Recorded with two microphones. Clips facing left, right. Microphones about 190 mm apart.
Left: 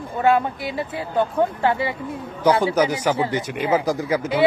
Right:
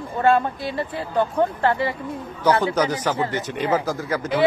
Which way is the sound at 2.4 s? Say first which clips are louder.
Left 2 dB; 10° left (ahead or behind).